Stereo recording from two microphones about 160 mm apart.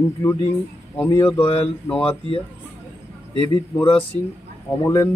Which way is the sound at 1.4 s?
35° left (ahead or behind).